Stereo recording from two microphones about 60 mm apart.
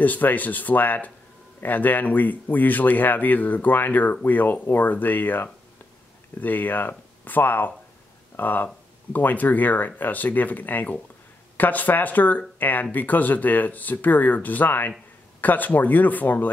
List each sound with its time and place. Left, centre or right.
0.0 s speech: left